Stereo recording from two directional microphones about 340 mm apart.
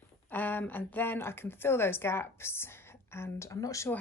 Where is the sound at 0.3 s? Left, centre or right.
Centre.